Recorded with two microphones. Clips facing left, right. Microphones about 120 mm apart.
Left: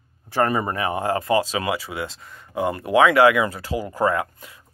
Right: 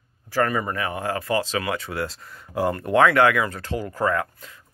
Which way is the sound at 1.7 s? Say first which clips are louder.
Right 1 dB; centre (ahead or behind).